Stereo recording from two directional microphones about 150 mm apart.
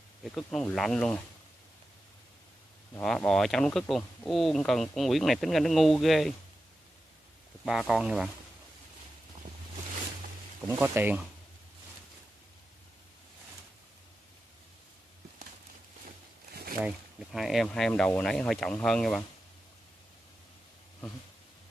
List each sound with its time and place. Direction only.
0.2 s speech: 5° left (ahead or behind)
3.0 s speech: 5° left (ahead or behind)
7.6 s speech: centre (ahead or behind)
10.8 s speech: 10° right (ahead or behind)
16.8 s speech: centre (ahead or behind)